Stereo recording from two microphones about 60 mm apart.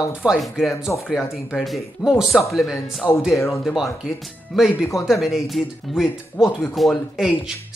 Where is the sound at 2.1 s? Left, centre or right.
Centre.